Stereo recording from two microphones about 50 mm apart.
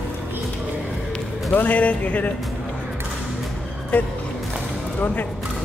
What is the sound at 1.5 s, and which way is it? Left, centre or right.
Speech, left.